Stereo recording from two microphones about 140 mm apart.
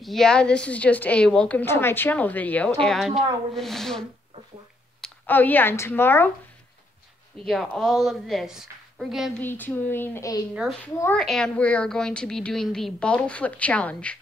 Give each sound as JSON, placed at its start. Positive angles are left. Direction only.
{"t": 0.0, "sound": "a woman's voice", "side_deg": 0}
{"t": 5.2, "sound": "a woman's voice", "side_deg": 15}
{"t": 7.4, "sound": "a woman's voice", "side_deg": 5}
{"t": 9.4, "sound": "a woman's voice", "side_deg": 15}
{"t": 11.1, "sound": "a woman's voice", "side_deg": 5}